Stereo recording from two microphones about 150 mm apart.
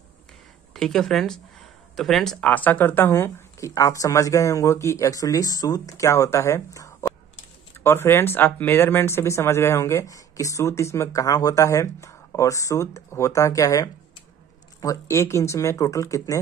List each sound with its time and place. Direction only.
0.7 s speech: 5° left (ahead or behind); by 16.3 s 20° left (ahead or behind)